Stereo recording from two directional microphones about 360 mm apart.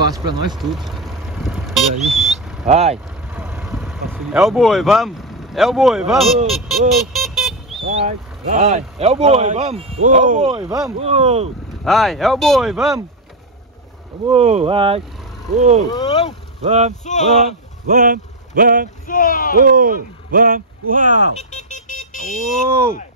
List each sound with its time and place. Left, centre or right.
0.2 s speech: centre
0.6 s speech: centre
2.6 s speech: centre
3.3 s speech: centre
8.5 s speech: centre
11.8 s speech: centre
14.2 s speech: centre
15.9 s speech: centre
16.6 s speech: centre
17.0 s speech: centre
17.8 s speech: right
19.0 s speech: left
19.5 s speech: right
21.4 s vehicle: centre